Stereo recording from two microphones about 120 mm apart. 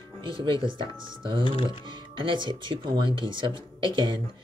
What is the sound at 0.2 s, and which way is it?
Speech, 45° right (ahead or behind).